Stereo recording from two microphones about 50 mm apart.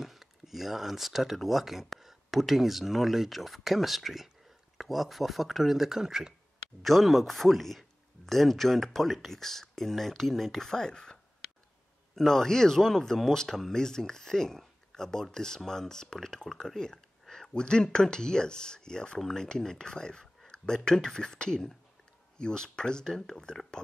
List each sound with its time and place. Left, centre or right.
0.0 s speech: centre
6.8 s speech: centre
12.2 s speech: centre